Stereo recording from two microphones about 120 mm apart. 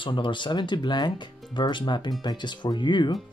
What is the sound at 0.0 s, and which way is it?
Speech, 45° left (ahead or behind).